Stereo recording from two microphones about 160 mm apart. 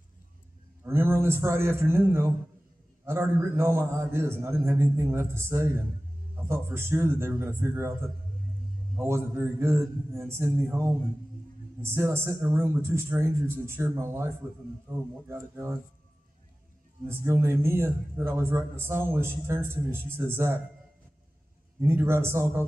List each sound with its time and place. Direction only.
0.8 s a man's voice: 15° right (ahead or behind)
8.9 s a man's voice: 15° right (ahead or behind)
17.1 s a man's voice: 15° right (ahead or behind)
21.8 s a man's voice: 15° right (ahead or behind)